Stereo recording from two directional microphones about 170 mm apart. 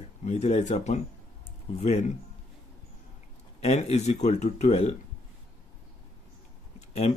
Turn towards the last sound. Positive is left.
turn(degrees=40)  # may be behind; listen again after turning